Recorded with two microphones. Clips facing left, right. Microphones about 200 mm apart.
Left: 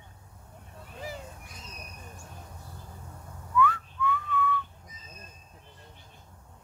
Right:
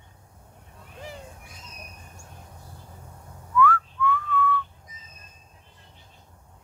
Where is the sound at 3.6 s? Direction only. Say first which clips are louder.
Right 4 dB; 20° left (ahead or behind).